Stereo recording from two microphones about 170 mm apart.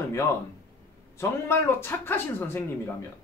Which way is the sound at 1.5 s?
15° left (ahead or behind).